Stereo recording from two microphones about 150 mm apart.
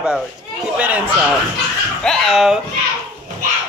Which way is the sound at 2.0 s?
5° left (ahead or behind).